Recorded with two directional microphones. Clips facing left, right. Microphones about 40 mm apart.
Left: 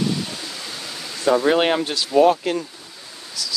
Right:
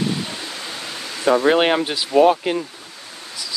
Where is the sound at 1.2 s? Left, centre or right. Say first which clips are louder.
Right 2 dB; right.